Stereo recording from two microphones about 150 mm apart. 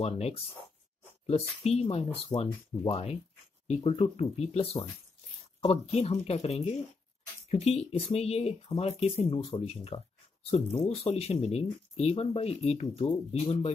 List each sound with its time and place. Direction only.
0.0 s speech: 45° left (ahead or behind)